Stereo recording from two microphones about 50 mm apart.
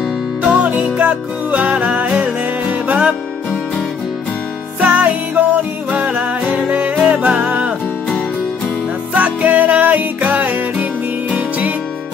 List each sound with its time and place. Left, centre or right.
0.4 s music: right
4.7 s music: right
9.1 s music: right